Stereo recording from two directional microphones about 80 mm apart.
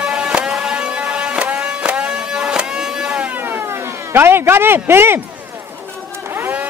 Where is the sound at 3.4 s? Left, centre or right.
Right.